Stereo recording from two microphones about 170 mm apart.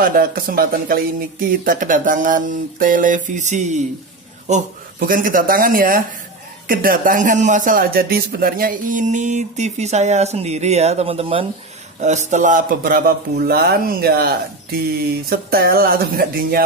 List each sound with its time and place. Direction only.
0.0 s a man's voice: 60° right (ahead or behind); by 11.4 s 35° right (ahead or behind)
12.0 s speech: 45° right (ahead or behind); by 16.6 s 60° right (ahead or behind)